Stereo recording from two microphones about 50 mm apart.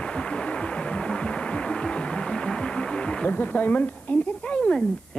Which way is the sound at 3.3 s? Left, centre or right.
Left.